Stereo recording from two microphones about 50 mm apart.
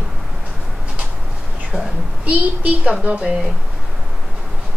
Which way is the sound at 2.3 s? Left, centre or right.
Right.